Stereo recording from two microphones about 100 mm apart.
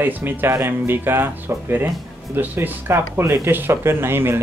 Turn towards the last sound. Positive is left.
turn(degrees=-25)  # may be behind; listen again after turning